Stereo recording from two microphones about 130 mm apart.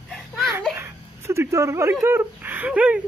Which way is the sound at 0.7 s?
20° right (ahead or behind).